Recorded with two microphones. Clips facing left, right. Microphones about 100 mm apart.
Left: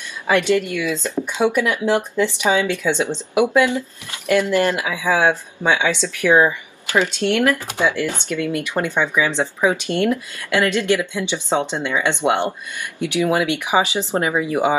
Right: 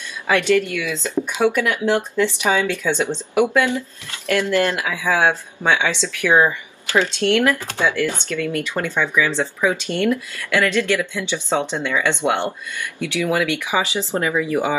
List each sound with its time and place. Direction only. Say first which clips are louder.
0.3 s speech: even; 15° left (ahead or behind)